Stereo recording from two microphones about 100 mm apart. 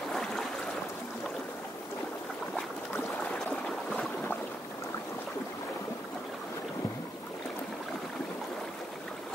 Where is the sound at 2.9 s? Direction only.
15° left (ahead or behind).